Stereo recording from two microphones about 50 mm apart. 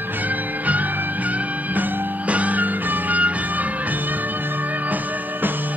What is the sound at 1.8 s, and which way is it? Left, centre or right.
Music, right.